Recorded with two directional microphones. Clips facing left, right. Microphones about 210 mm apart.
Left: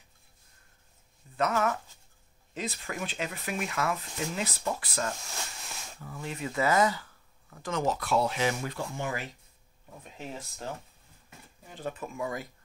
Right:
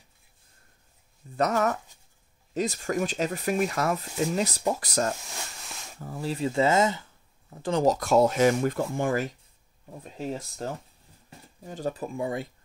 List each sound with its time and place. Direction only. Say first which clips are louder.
1.3 s speech: right 3 dB; 40° right (ahead or behind)
9.8 s speech: right 8 dB; 35° right (ahead or behind)